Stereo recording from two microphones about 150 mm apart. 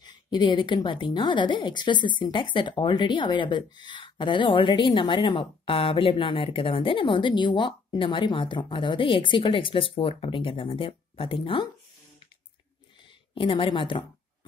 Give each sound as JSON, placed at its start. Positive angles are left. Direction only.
{"t": 0.0, "sound": "a woman's voice", "side_deg": 30}
{"t": 13.3, "sound": "a woman's voice", "side_deg": 35}